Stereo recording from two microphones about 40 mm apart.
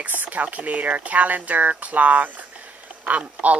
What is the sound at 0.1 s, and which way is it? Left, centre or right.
Speech, right.